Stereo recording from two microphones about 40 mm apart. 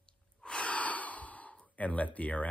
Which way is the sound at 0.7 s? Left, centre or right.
Left.